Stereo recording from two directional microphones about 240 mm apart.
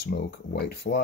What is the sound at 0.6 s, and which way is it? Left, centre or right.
Speech, left.